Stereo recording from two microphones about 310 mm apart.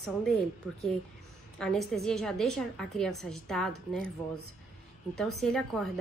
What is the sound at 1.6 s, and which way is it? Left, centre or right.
A woman's voice, centre.